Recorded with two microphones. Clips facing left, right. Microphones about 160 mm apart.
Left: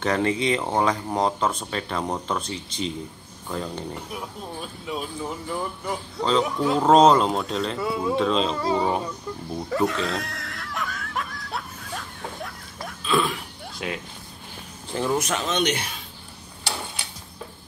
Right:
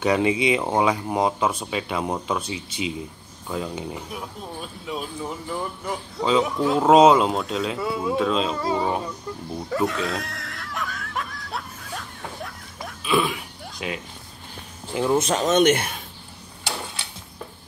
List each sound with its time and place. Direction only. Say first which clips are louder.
0.0 s speech: right 2 dB; 10° right (ahead or behind)
9.7 s a sound: even; centre (ahead or behind)
15.1 s speech: right 4 dB; 30° right (ahead or behind)
15.4 s speech: right 7 dB; 50° right (ahead or behind)